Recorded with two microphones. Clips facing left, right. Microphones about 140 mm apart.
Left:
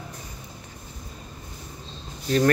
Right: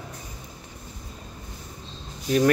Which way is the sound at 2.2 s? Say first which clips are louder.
Even; 10° right (ahead or behind).